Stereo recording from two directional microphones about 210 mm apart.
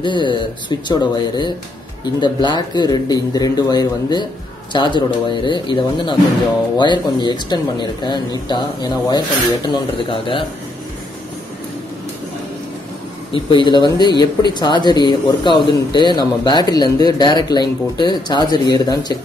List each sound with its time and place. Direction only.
0.0 s speech: 20° left (ahead or behind)
13.3 s speech: 25° left (ahead or behind)